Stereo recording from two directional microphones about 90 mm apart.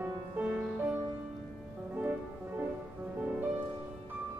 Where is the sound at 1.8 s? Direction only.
20° right (ahead or behind).